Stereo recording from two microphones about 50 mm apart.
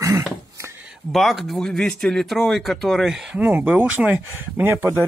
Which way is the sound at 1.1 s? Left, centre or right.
Centre.